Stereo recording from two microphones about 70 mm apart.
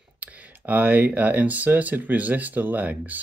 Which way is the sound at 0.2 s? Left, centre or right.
Right.